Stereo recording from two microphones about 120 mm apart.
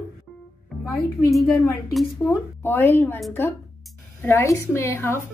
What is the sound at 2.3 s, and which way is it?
Speech, 20° left (ahead or behind).